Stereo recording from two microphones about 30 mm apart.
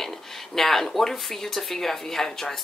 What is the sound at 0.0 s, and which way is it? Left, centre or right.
Speech, centre.